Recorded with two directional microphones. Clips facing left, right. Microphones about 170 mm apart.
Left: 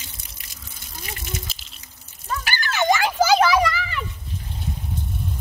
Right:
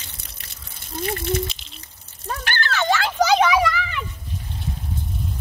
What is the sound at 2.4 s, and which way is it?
Children playing, 15° left (ahead or behind).